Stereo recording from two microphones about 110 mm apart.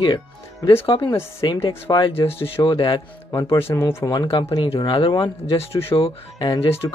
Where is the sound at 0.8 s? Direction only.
55° left (ahead or behind).